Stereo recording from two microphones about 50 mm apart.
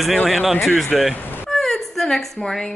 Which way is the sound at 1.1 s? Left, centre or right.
Left.